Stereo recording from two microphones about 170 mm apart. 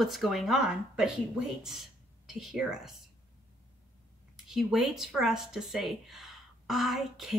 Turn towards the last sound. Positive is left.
turn(degrees=0)  # may be behind; listen again after turning